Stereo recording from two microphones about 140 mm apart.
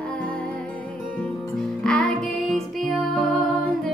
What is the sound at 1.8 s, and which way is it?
Music, 5° left (ahead or behind).